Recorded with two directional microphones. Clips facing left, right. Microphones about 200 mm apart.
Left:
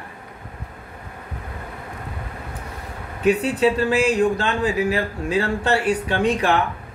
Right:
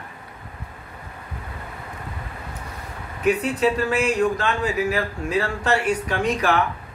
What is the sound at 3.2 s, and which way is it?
Speech, 30° left (ahead or behind).